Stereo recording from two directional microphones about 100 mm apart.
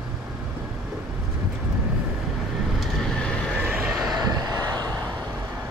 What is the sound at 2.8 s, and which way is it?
Vehicle, 5° left (ahead or behind).